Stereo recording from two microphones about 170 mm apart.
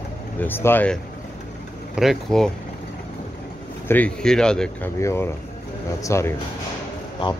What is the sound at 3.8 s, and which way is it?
Speech, 10° left (ahead or behind).